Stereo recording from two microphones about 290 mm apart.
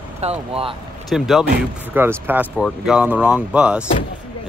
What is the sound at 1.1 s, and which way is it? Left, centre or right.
Speech, centre.